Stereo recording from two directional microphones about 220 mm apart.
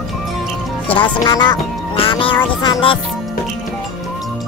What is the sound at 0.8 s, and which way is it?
Speech, 20° left (ahead or behind).